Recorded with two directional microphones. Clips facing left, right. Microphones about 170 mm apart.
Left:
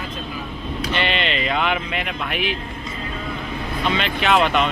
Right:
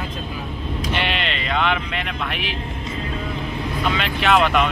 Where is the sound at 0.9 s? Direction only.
5° right (ahead or behind).